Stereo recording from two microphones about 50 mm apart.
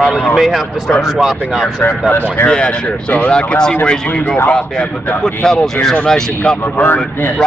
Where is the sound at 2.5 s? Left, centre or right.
Centre.